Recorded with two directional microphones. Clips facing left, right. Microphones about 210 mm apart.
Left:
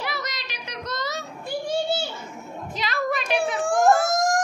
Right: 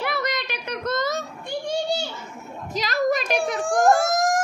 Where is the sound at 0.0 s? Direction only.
55° right (ahead or behind).